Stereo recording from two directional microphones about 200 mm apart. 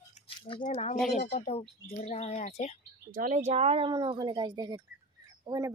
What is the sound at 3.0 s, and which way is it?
Speech, 40° right (ahead or behind).